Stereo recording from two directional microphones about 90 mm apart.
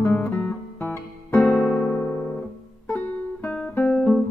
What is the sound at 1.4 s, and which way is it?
Music, 10° left (ahead or behind).